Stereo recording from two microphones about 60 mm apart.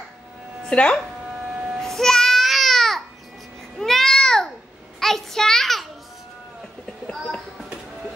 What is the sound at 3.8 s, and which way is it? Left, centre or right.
Babbling, centre.